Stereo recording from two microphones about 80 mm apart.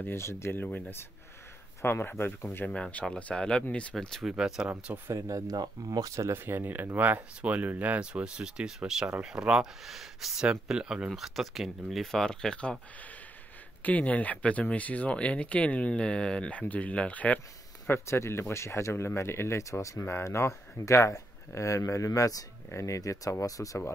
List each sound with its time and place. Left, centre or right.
0.0 s speech: left
2.5 s speech: centre
4.3 s speech: centre
4.6 s speech: right
5.1 s speech: right; by 17.4 s centre
17.8 s speech: left